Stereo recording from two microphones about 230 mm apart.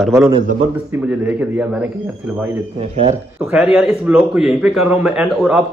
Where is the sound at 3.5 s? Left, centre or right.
Centre.